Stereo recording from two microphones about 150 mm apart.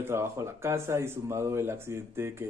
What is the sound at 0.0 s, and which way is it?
Speech, 15° right (ahead or behind).